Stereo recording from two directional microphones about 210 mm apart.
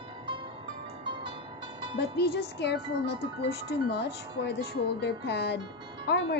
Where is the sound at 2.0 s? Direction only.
50° left (ahead or behind).